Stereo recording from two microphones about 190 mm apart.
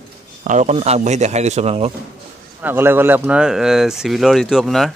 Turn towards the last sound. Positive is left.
turn(degrees=0)  # may be behind; listen again after turning